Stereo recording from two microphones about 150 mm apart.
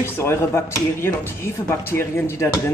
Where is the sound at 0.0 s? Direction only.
15° left (ahead or behind).